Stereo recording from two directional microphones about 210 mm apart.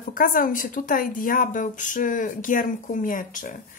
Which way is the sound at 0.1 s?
40° left (ahead or behind).